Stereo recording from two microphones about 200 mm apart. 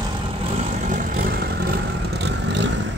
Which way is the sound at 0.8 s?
45° right (ahead or behind).